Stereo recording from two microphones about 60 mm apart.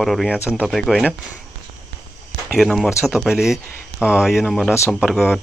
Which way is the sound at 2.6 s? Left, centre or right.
Centre.